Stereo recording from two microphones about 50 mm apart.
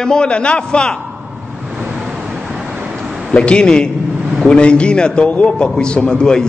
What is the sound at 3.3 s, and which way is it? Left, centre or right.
A man's voice, left.